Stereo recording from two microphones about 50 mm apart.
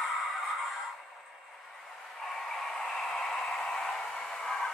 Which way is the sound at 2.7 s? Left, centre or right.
Centre.